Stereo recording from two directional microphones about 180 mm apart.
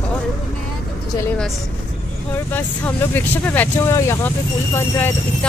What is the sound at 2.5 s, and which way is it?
Speech, 10° left (ahead or behind).